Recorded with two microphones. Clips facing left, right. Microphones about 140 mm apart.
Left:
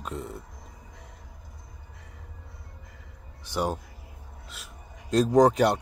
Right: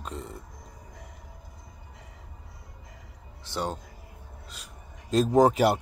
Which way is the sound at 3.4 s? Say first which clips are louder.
Left 3 dB; 10° left (ahead or behind).